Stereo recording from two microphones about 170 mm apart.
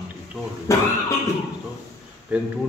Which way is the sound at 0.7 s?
20° left (ahead or behind).